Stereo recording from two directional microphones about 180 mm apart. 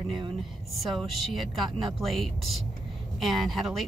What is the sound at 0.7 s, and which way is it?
A woman's voice, centre (ahead or behind).